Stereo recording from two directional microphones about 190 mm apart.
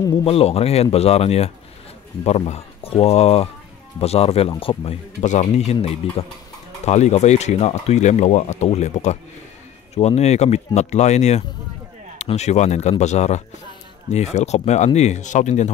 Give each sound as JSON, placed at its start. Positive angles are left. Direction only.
{"t": 0.2, "sound": "speech", "side_deg": 30}